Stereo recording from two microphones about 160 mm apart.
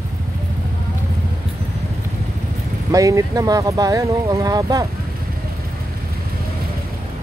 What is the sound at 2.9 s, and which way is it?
Speech, 20° right (ahead or behind).